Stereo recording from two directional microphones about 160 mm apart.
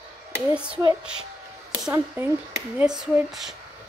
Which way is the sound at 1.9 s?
15° right (ahead or behind).